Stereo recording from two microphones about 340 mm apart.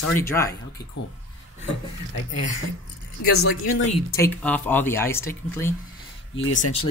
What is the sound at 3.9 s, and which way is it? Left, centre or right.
Speech, centre.